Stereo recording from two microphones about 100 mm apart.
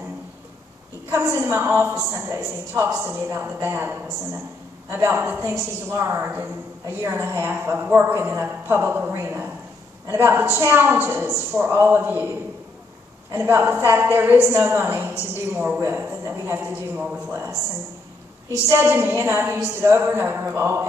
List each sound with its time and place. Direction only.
1.1 s a woman's voice: 25° right (ahead or behind)
4.9 s a woman's voice: 20° right (ahead or behind)